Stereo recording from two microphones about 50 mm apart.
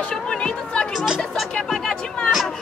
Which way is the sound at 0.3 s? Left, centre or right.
Centre.